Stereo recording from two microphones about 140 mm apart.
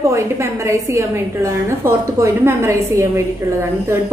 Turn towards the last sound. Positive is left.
turn(degrees=-20)  # may be behind; listen again after turning